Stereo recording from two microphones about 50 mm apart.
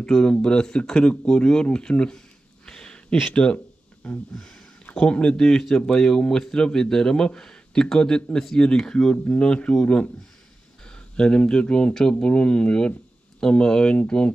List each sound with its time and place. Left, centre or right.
0.0 s speech: centre
3.3 s a sound: centre
4.4 s a sound: centre
5.0 s speech: left
5.4 s speech: centre
10.9 s speech: centre